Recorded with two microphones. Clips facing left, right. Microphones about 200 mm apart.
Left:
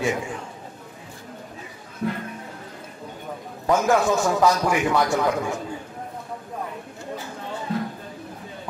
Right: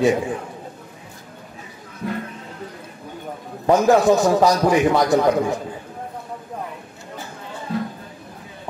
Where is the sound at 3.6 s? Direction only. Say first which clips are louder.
Right 5 dB; 35° right (ahead or behind).